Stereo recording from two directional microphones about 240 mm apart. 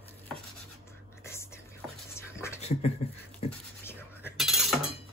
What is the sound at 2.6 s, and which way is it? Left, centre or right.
Beatboxing, left.